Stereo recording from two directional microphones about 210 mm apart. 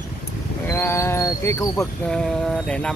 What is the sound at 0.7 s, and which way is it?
Speech, 10° left (ahead or behind).